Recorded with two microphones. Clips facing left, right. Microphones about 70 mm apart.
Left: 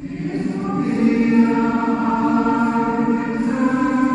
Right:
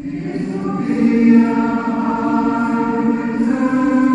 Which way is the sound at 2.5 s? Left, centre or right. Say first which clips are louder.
Right 1 dB; centre.